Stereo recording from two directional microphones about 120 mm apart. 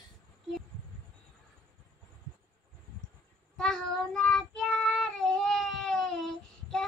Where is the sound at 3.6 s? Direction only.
5° left (ahead or behind).